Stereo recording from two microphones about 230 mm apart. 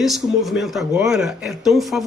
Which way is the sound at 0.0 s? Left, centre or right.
Centre.